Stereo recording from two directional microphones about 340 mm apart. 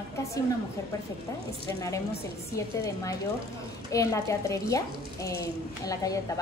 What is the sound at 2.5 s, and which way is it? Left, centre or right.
A woman's voice, centre.